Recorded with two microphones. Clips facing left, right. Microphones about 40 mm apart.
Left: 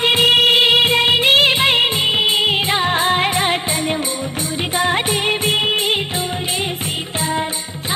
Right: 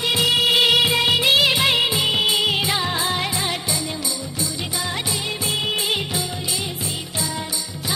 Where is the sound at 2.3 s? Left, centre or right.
Left.